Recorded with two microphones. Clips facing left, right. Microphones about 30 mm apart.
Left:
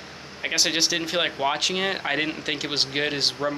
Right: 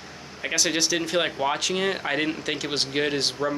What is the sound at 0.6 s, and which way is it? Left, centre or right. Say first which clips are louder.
Speech: left 1 dB; left.